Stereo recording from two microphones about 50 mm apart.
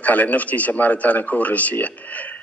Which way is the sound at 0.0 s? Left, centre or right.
Left.